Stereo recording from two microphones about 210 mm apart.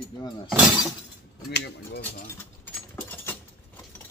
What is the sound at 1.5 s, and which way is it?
Speech, 55° left (ahead or behind).